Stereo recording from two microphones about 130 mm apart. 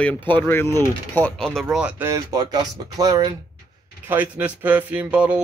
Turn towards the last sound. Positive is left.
turn(degrees=-10)  # may be behind; listen again after turning